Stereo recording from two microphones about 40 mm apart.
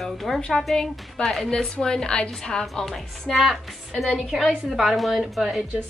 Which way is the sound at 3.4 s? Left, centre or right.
Centre.